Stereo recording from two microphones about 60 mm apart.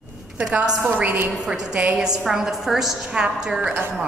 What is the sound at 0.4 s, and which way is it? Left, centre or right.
A woman's voice, centre.